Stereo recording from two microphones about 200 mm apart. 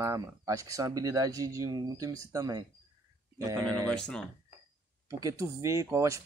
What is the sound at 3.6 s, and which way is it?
Speech, 5° left (ahead or behind).